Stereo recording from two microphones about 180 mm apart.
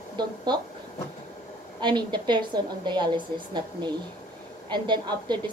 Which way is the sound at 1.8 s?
25° right (ahead or behind).